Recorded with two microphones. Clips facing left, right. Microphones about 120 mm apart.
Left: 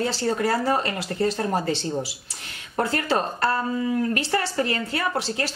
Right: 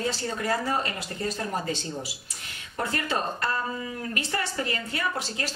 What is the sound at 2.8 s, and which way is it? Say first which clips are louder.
Speech: left 6 dB; 30° left (ahead or behind).